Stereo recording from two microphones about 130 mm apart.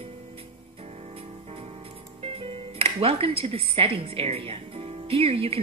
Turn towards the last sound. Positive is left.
turn(degrees=-50)  # may be behind; listen again after turning